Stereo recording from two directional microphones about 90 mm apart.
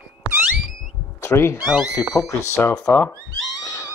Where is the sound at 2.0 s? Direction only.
35° left (ahead or behind).